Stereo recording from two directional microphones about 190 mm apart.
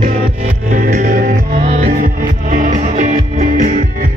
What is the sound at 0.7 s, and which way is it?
Music, 45° right (ahead or behind).